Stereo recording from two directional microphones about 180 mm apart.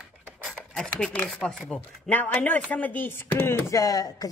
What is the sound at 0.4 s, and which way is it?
Speech, centre (ahead or behind).